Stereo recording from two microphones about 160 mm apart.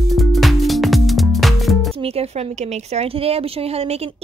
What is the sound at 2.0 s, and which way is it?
A woman's voice, 40° right (ahead or behind).